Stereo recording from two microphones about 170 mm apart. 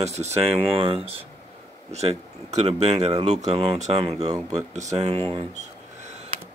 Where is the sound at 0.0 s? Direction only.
40° right (ahead or behind).